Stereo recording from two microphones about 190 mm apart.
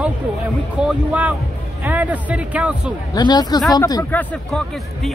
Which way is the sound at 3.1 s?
20° left (ahead or behind).